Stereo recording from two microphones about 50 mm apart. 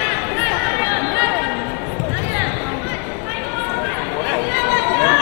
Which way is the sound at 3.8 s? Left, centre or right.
Centre.